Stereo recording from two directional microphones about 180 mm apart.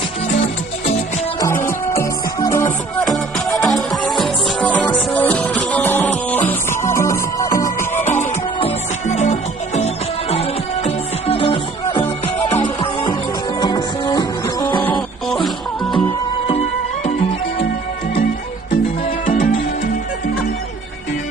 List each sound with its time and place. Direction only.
1.4 s music: 15° left (ahead or behind)
3.0 s music: centre (ahead or behind); by 8.0 s 20° left (ahead or behind)
8.0 s music: 40° left (ahead or behind); by 14.8 s 25° left (ahead or behind)
14.8 s music: 5° left (ahead or behind)
16.4 s music: 35° left (ahead or behind)
19.2 s music: 45° left (ahead or behind)